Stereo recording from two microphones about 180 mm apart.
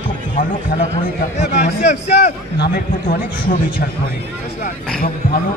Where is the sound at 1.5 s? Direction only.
40° left (ahead or behind).